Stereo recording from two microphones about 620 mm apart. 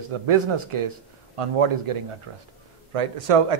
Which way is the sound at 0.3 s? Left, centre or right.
Right.